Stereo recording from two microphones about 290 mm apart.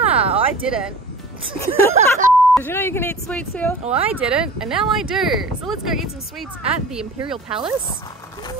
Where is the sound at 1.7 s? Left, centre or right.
Right.